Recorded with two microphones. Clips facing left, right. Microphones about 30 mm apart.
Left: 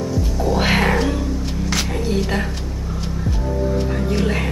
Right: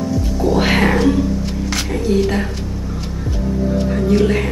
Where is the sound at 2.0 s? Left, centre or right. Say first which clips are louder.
Right 7 dB; centre.